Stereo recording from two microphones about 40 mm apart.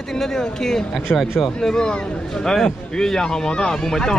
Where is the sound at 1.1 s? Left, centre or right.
Left.